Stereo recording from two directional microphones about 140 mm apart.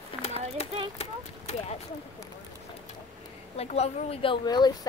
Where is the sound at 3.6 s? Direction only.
45° left (ahead or behind).